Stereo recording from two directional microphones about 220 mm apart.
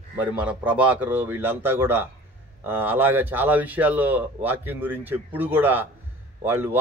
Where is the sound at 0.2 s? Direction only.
5° right (ahead or behind).